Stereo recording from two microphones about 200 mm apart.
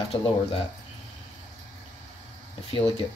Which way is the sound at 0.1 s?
30° left (ahead or behind).